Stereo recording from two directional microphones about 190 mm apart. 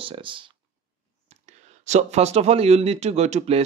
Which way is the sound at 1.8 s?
35° right (ahead or behind).